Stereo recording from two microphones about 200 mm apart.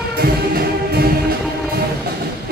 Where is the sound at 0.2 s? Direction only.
50° right (ahead or behind).